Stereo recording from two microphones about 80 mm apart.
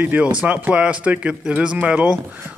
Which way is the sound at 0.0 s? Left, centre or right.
Centre.